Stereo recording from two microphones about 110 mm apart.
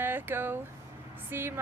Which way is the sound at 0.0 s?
20° right (ahead or behind).